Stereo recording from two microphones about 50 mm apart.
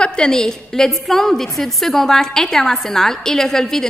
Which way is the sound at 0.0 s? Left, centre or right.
Centre.